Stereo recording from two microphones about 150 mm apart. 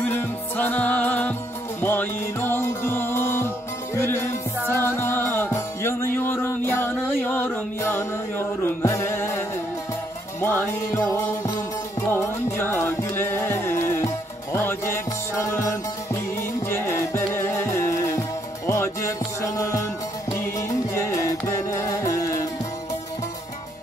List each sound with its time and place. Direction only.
0.0 s music: 15° left (ahead or behind)
10.4 s music: 15° left (ahead or behind)